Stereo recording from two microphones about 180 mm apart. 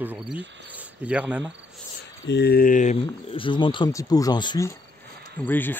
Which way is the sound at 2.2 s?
70° left (ahead or behind).